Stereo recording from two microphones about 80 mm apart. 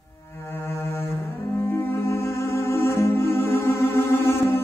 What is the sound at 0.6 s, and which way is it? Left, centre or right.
Music, left.